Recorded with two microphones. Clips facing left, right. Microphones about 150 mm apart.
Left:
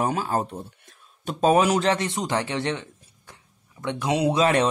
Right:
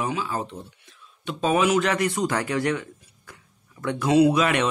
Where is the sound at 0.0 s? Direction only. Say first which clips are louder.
Left 3 dB; 45° left (ahead or behind).